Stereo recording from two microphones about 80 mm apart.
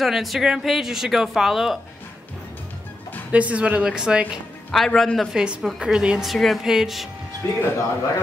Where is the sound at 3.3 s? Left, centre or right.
Centre.